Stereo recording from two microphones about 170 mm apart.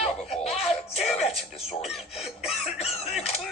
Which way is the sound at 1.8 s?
Centre (ahead or behind).